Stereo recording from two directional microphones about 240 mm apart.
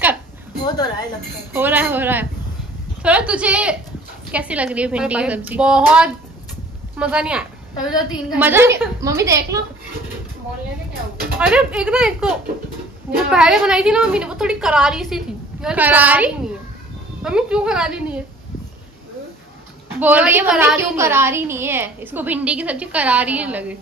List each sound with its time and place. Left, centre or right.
0.7 s speech: centre
1.5 s a woman's voice: centre
11.3 s a woman's voice: centre
20.0 s a woman's voice: centre